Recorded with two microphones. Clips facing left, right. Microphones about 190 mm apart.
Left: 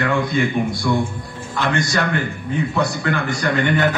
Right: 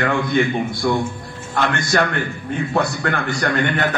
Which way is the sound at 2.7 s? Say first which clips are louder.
Right 3 dB; 60° right (ahead or behind).